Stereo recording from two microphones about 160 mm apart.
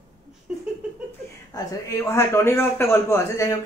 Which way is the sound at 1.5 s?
15° left (ahead or behind).